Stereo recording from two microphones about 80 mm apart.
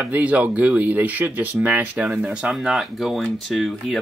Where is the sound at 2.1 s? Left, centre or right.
Centre.